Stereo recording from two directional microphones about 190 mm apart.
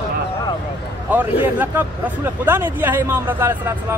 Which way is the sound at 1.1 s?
10° right (ahead or behind).